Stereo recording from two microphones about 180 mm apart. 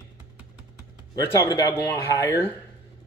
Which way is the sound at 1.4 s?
20° left (ahead or behind).